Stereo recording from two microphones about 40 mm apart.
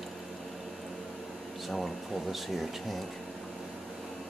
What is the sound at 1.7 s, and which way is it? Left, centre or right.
Speech, centre.